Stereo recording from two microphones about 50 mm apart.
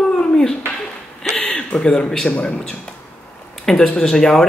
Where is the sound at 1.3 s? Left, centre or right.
Left.